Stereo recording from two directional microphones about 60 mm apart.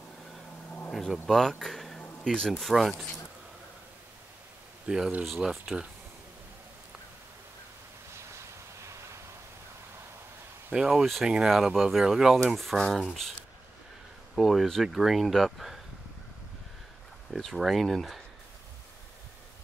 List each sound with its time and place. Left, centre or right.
0.9 s speech: centre
2.6 s speech: centre
4.8 s speech: centre
8.1 s a sound: right
10.7 s speech: centre
12.5 s speech: centre
14.3 s speech: centre
17.4 s speech: centre